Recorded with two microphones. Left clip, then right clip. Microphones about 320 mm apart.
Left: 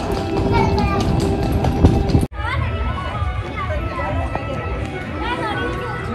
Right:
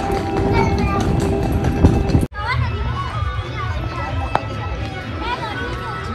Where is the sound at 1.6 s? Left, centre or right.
Centre.